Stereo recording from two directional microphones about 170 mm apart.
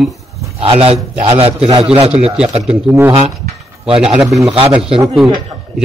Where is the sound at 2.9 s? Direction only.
15° right (ahead or behind).